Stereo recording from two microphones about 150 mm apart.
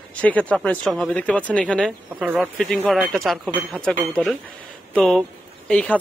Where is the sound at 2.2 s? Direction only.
10° right (ahead or behind).